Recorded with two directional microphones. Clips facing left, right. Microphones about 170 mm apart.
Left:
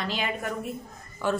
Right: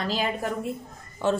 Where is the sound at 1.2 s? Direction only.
25° right (ahead or behind).